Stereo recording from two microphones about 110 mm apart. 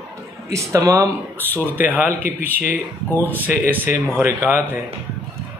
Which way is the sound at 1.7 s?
15° right (ahead or behind).